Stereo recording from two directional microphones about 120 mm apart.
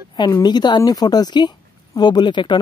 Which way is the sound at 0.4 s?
35° left (ahead or behind).